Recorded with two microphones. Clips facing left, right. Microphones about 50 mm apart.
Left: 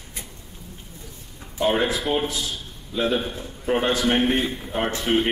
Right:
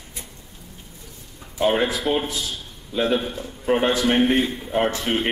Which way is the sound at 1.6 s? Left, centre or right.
Centre.